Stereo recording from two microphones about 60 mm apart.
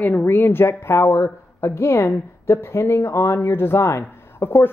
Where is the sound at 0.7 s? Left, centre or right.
Left.